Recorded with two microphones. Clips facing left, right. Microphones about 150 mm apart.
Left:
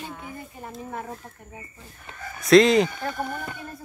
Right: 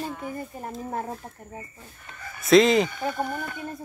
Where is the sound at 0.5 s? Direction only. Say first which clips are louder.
Right 3 dB; 40° right (ahead or behind).